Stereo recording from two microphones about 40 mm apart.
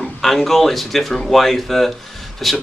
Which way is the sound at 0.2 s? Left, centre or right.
Centre.